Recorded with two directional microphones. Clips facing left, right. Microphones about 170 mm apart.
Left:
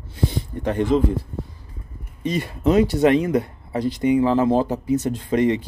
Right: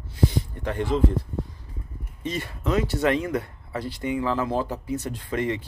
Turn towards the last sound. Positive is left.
turn(degrees=20)  # may be behind; listen again after turning